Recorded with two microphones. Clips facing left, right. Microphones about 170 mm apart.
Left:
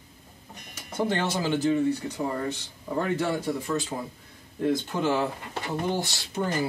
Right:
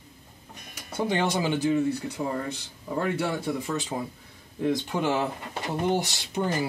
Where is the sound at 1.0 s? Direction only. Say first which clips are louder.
Right 1 dB; 15° right (ahead or behind).